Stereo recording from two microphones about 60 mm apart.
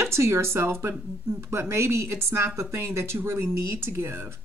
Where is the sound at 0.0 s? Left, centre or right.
Right.